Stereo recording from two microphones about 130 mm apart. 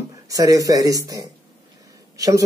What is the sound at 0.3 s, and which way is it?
Speech, 25° right (ahead or behind).